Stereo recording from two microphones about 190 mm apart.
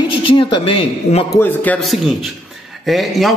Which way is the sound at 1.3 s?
10° left (ahead or behind).